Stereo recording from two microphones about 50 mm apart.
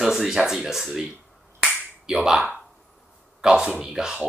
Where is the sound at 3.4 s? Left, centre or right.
Centre.